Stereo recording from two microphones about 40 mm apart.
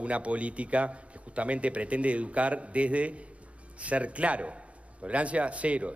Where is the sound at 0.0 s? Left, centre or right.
Right.